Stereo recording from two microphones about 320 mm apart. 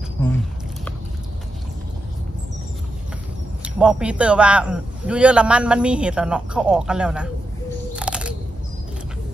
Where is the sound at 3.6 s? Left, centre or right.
Centre.